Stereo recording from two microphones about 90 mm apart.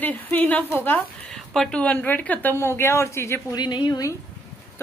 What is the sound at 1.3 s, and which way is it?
A woman's voice, 5° left (ahead or behind).